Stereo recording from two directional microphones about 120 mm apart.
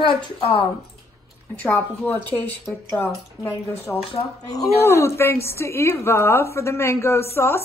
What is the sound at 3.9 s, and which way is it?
A woman's voice, 20° left (ahead or behind).